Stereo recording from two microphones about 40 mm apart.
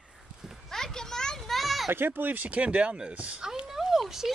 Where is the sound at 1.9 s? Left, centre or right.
Right.